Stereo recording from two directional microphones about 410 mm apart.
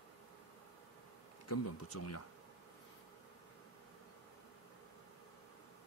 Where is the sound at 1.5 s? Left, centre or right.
Left.